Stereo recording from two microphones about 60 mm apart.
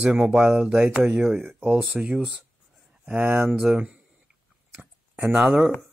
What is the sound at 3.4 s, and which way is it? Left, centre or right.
Speech, centre.